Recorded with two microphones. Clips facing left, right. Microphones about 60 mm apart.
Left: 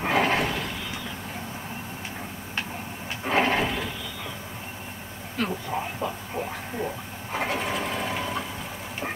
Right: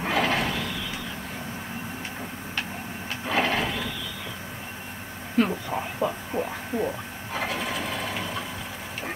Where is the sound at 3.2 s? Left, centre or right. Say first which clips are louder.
Left 2 dB; left.